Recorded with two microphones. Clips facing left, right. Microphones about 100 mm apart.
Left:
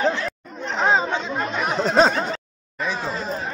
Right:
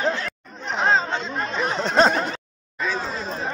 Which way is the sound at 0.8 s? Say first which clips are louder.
Left 1 dB; 15° left (ahead or behind).